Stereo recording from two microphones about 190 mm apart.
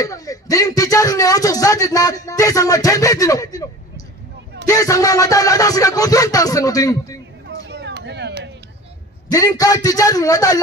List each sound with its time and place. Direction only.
0.0 s speech: 20° left (ahead or behind)
4.6 s music: 20° left (ahead or behind)
7.4 s a sound: 65° right (ahead or behind)
9.3 s music: 20° left (ahead or behind)